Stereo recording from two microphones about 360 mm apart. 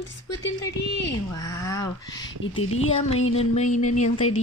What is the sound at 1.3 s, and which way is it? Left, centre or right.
Speech, centre.